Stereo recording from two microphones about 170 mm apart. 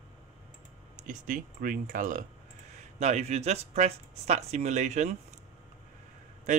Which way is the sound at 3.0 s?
40° right (ahead or behind).